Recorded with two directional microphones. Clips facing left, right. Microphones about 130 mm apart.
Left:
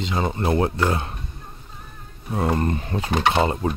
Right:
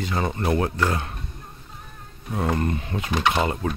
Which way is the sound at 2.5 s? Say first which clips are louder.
Left 2 dB; 35° left (ahead or behind).